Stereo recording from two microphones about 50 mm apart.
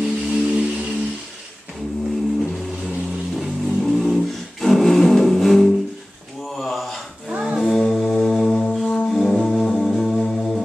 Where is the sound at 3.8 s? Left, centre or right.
Centre.